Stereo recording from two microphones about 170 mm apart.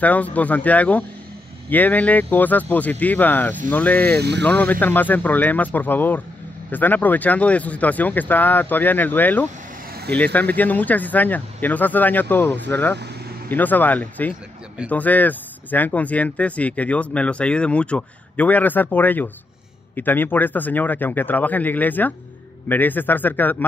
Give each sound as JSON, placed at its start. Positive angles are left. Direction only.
{"t": 0.0, "sound": "speech", "side_deg": 10}
{"t": 4.2, "sound": "speech", "side_deg": -85}
{"t": 4.5, "sound": "speech", "side_deg": 10}